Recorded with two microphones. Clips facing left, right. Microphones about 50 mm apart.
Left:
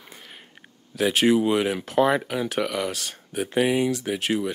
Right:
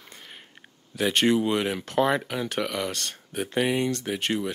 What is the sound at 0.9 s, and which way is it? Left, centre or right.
Speech, centre.